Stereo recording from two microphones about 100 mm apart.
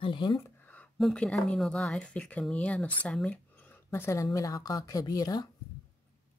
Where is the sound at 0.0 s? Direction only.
55° left (ahead or behind).